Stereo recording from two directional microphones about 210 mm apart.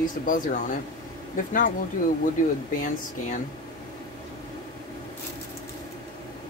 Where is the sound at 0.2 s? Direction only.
40° left (ahead or behind).